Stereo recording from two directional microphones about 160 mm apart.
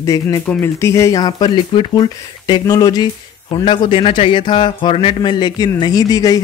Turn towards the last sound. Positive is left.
turn(degrees=25)  # may be behind; listen again after turning